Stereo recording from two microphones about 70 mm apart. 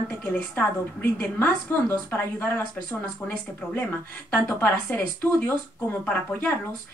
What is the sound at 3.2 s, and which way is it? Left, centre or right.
Speech, left.